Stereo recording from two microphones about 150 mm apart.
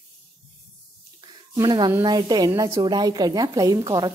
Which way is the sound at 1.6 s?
30° right (ahead or behind).